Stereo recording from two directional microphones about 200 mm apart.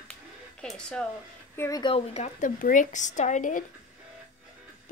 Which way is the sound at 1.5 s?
15° left (ahead or behind).